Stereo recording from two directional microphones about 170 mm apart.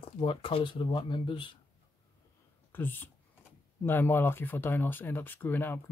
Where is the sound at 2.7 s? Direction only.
10° left (ahead or behind).